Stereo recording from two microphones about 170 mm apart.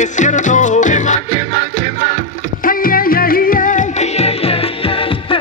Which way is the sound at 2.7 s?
55° left (ahead or behind).